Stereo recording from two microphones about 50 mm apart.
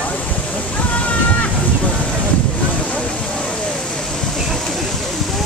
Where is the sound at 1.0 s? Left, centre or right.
Left.